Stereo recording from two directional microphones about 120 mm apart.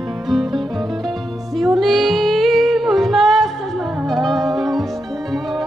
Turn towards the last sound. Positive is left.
turn(degrees=0)  # may be behind; listen again after turning